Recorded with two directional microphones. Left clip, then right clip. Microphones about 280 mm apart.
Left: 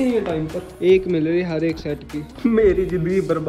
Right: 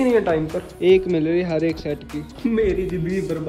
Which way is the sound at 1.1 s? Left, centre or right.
Right.